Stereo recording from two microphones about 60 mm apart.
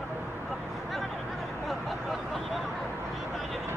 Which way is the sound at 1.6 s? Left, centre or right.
Centre.